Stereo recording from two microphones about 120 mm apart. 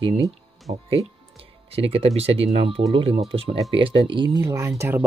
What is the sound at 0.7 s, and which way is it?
Speech, 70° right (ahead or behind).